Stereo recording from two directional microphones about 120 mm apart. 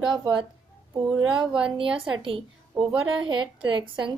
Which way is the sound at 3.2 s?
40° right (ahead or behind).